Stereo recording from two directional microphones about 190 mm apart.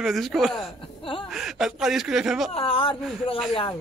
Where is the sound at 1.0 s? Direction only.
25° left (ahead or behind).